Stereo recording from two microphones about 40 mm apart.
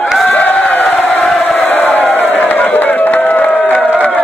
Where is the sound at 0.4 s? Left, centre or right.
Left.